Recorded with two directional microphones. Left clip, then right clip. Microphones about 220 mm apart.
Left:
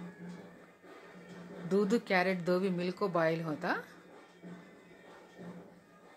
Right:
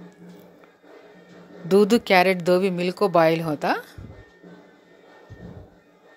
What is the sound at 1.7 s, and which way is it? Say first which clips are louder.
A woman's voice: right 13 dB; 40° right (ahead or behind).